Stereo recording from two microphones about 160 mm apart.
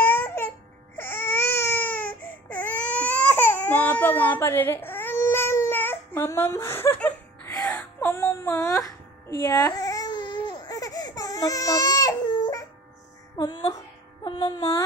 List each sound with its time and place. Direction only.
0.0 s baby cry: 10° left (ahead or behind)
7.5 s wail: 20° left (ahead or behind)
9.4 s baby cry: 20° left (ahead or behind)
13.4 s speech: 30° left (ahead or behind)
14.2 s music: 25° left (ahead or behind)